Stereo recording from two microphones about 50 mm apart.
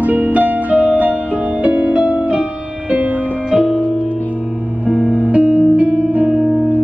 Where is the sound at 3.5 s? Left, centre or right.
Centre.